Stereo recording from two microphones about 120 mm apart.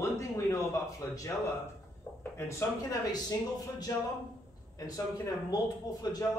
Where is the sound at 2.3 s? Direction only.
25° left (ahead or behind).